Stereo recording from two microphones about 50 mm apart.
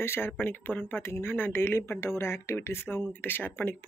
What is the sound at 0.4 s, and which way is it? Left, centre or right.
Speech, left.